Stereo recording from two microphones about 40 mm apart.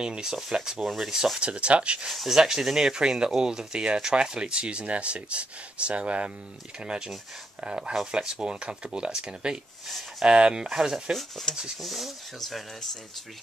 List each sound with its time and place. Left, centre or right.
0.0 s speech: centre
1.4 s speech: right
2.0 s speech: centre
11.5 s speech: centre
11.8 s speech: centre